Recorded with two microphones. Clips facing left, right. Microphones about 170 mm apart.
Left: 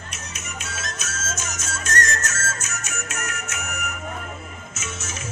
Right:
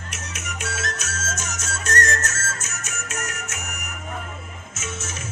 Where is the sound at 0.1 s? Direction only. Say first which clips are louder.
Right 3 dB; 85° right; by 1.7 s 65° right (ahead or behind).